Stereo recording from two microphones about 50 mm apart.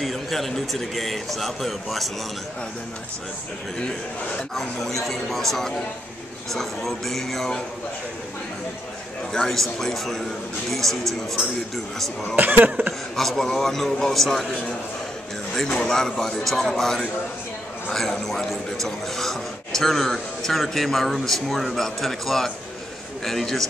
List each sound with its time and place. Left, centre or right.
0.0 s a man's voice: centre
4.6 s a man's voice: centre
9.3 s a man's voice: centre
12.4 s cough: right
13.1 s a man's voice: centre
15.5 s a man's voice: centre